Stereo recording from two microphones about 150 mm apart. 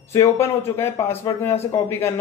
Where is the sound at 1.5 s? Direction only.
45° left (ahead or behind).